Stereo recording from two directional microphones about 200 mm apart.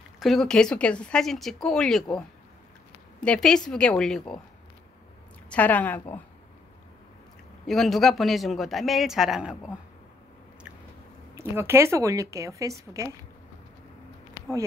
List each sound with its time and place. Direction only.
0.2 s speech: centre (ahead or behind)
5.5 s speech: 10° left (ahead or behind)
7.6 s speech: centre (ahead or behind)
11.3 s a woman's voice: 10° right (ahead or behind)